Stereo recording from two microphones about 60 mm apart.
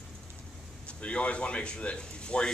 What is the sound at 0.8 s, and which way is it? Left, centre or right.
Speech, left.